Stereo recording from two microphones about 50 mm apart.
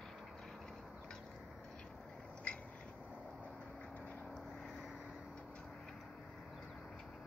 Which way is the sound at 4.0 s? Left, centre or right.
Left.